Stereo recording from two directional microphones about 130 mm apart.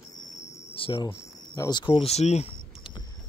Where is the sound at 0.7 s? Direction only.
40° left (ahead or behind).